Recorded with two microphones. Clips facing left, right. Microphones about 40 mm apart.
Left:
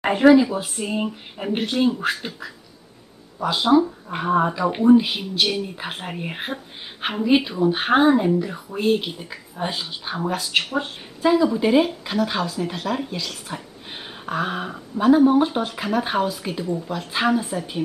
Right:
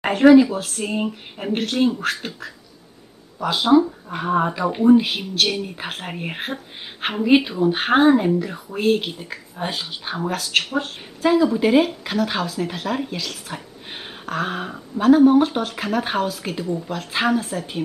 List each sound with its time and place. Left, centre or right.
0.0 s speech: centre
0.6 s speech: centre
0.8 s speech: centre
10.3 s speech: centre